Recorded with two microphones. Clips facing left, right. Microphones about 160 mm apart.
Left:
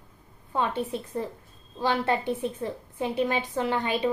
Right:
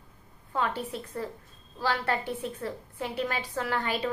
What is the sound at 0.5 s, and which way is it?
A woman's voice, 20° left (ahead or behind).